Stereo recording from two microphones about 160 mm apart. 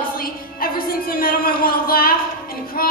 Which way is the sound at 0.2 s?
65° left (ahead or behind).